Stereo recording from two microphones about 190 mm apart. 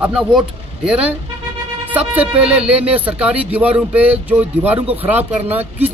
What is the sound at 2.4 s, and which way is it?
Speech, 5° right (ahead or behind).